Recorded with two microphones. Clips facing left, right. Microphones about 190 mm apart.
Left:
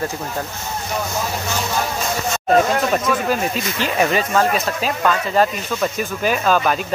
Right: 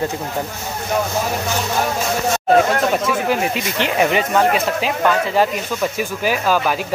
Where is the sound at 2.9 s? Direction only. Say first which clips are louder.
Right 1 dB; 10° right (ahead or behind).